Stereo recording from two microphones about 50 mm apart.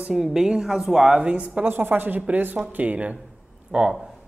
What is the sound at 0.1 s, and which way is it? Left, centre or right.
A woman's voice, centre.